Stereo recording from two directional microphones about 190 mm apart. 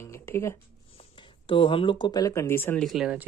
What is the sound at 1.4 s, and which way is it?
Speech, 30° left (ahead or behind).